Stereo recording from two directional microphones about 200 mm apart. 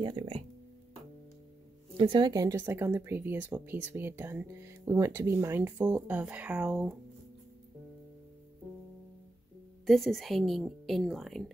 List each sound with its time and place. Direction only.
0.0 s speech: 25° right (ahead or behind)
2.0 s speech: 25° right (ahead or behind); by 7.0 s 5° right (ahead or behind)
9.8 s a woman's voice: centre (ahead or behind)